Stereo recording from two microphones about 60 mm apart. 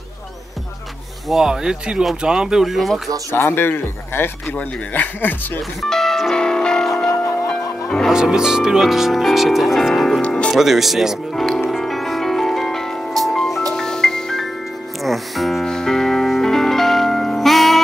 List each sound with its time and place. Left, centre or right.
1.3 s speech: centre
3.3 s speech: left
4.6 s speech: left
5.8 s music: centre
8.1 s speech: centre
10.2 s music: centre
10.5 s music: centre